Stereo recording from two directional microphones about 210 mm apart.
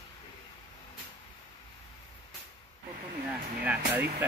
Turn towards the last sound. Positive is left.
turn(degrees=-10)  # may be behind; listen again after turning